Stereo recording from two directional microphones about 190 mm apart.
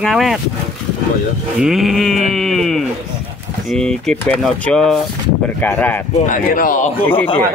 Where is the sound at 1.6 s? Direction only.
Centre (ahead or behind).